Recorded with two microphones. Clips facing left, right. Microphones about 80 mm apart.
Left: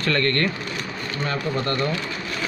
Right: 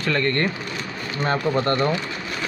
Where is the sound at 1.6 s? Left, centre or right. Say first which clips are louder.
Right 3 dB; right.